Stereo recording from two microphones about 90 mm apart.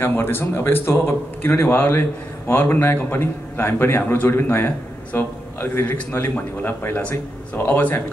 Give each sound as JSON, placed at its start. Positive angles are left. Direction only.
{"t": 0.0, "sound": "a man's voice", "side_deg": 25}